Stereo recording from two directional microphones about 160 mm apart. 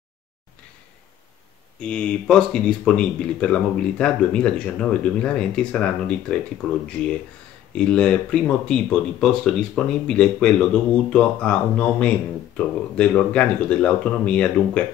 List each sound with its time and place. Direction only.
1.8 s speech: 5° left (ahead or behind)